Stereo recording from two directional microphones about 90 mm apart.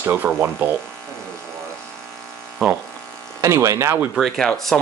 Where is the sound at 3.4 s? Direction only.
35° right (ahead or behind).